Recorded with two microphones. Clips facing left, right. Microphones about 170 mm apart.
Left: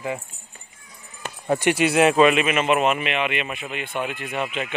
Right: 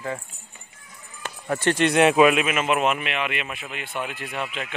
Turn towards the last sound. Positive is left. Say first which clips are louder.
# left 3 dB
turn(degrees=0)  # may be behind; listen again after turning